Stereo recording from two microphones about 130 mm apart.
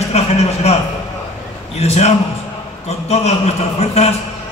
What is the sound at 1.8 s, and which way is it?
A man's voice, 55° left (ahead or behind).